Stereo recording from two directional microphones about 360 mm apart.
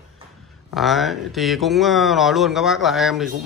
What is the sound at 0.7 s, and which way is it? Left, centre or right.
Speech, centre.